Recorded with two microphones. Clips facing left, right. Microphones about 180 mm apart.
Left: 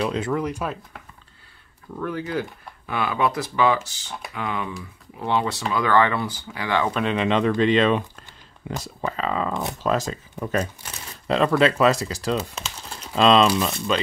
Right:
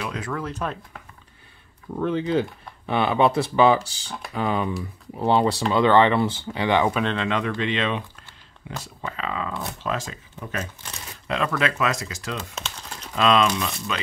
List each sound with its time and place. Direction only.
0.0 s speech: 25° left (ahead or behind); by 0.7 s 10° left (ahead or behind)
2.0 s speech: 25° right (ahead or behind)
6.9 s speech: centre (ahead or behind)
7.2 s speech: 25° left (ahead or behind)
7.5 s speech: 40° left (ahead or behind)
12.5 s crumpling: 5° left (ahead or behind)
13.1 s speech: 30° left (ahead or behind)